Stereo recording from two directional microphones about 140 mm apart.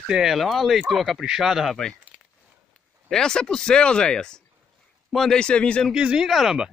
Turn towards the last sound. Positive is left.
turn(degrees=0)  # may be behind; listen again after turning